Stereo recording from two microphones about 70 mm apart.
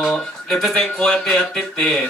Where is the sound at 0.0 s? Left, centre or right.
Centre.